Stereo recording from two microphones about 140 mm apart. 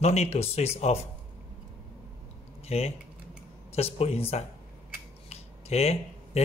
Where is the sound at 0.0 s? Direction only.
50° left (ahead or behind).